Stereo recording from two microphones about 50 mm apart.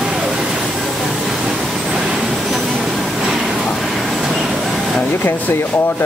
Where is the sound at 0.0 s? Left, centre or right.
Centre.